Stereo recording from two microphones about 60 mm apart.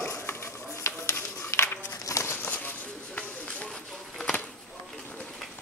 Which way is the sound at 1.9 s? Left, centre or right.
Left.